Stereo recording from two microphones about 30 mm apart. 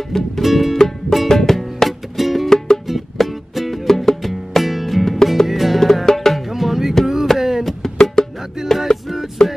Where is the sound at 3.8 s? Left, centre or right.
Centre.